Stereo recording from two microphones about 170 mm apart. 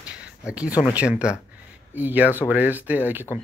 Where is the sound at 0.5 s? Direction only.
5° right (ahead or behind).